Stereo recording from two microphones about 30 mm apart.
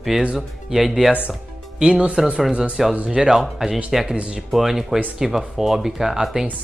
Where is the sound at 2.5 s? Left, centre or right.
Right.